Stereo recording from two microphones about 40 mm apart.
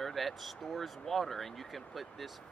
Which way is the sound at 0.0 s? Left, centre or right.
Centre.